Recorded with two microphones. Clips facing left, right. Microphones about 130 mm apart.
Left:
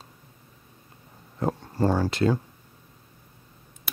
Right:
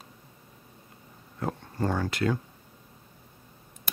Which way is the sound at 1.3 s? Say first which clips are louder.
Left 5 dB; 30° left (ahead or behind).